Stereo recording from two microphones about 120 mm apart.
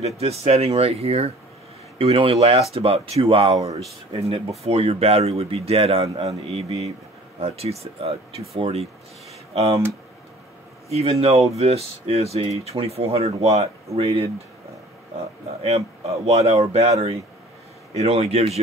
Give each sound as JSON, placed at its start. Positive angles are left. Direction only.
{"t": 0.0, "sound": "speech", "side_deg": -60}
{"t": 10.9, "sound": "speech", "side_deg": -60}
{"t": 17.9, "sound": "speech", "side_deg": -60}